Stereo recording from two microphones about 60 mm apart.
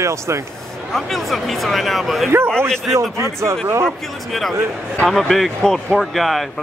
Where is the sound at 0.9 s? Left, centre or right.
Centre.